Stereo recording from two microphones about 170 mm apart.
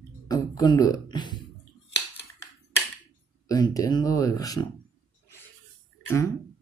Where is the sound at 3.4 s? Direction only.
20° left (ahead or behind).